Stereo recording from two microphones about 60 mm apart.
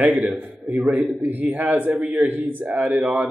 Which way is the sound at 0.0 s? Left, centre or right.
Right.